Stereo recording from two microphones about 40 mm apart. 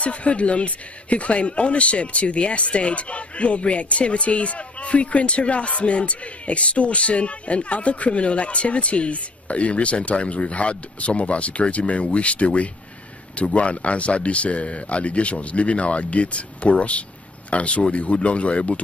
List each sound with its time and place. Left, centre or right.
0.0 s speech: left